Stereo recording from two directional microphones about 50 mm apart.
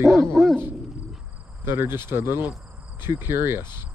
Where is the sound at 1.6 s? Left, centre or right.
Right.